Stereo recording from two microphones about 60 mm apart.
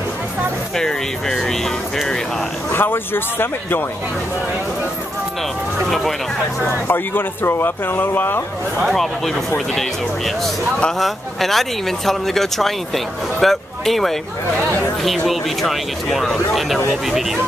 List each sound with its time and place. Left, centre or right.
0.7 s speech: centre
2.7 s speech: left
5.9 s speech: centre
6.9 s speech: left
8.8 s speech: centre